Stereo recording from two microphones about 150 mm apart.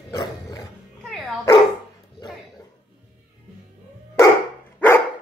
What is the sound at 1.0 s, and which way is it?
Dog, centre (ahead or behind).